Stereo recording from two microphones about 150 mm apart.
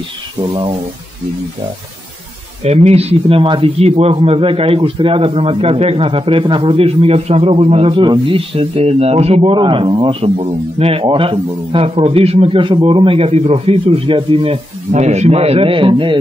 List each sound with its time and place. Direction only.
0.5 s a man's voice: 35° right (ahead or behind)
2.6 s a man's voice: 45° right (ahead or behind)